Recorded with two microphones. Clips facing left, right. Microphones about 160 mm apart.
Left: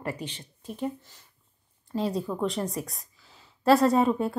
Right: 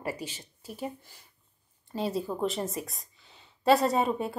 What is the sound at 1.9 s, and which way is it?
Speech, centre (ahead or behind).